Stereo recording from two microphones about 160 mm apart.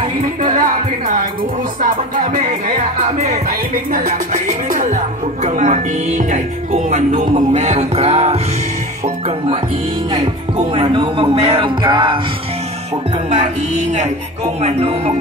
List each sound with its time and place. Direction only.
0.4 s speech: 55° right (ahead or behind)
10.6 s speech: 35° right (ahead or behind)
13.3 s speech: 45° right (ahead or behind)